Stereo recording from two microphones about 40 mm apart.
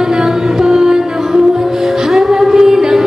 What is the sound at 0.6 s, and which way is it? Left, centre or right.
Music, centre.